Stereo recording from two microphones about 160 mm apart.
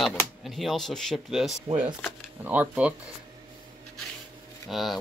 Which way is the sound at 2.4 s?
10° right (ahead or behind).